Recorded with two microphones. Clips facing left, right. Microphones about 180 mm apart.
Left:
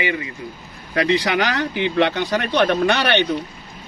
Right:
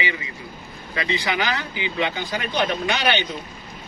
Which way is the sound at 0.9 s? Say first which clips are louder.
Left 6 dB; 70° left (ahead or behind).